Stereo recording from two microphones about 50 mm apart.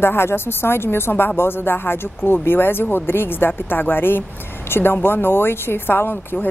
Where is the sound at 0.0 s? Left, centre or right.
Left.